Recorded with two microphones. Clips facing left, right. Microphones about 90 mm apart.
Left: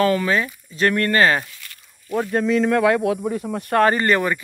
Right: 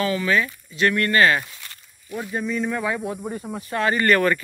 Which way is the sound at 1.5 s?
30° right (ahead or behind).